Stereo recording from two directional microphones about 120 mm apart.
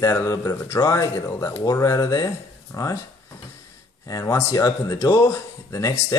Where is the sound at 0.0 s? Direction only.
25° left (ahead or behind).